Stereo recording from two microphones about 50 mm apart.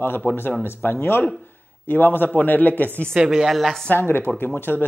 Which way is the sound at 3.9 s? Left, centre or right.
Left.